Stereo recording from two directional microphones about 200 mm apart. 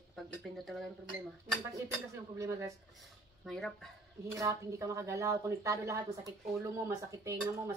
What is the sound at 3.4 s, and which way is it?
Speech, centre (ahead or behind).